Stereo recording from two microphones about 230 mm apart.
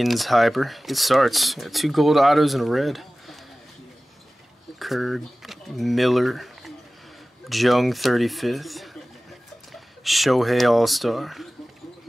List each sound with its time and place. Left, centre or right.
0.0 s speech: centre
4.7 s speech: centre